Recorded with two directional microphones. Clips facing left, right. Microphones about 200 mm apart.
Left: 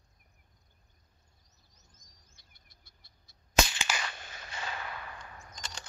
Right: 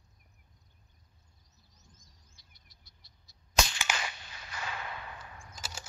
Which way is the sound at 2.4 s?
55° left (ahead or behind).